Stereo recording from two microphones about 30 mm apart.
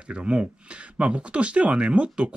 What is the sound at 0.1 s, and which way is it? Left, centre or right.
Speech, right.